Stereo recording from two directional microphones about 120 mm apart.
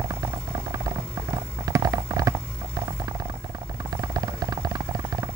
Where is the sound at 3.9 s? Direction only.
30° right (ahead or behind).